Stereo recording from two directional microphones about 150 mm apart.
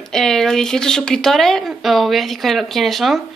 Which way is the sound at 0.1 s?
5° left (ahead or behind).